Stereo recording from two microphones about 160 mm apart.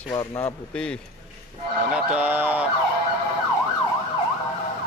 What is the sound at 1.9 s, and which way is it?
Emergency vehicle, 10° right (ahead or behind).